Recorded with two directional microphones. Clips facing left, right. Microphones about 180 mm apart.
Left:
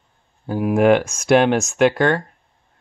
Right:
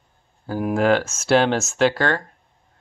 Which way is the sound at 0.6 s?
10° left (ahead or behind).